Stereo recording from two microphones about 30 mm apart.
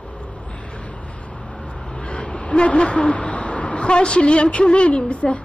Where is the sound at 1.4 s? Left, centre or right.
Left.